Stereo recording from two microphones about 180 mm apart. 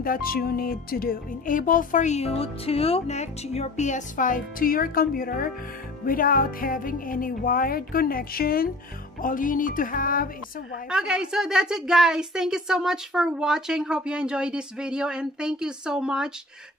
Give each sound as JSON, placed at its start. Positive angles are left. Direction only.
{"t": 0.0, "sound": "speech", "side_deg": 55}
{"t": 10.9, "sound": "a woman's voice", "side_deg": -5}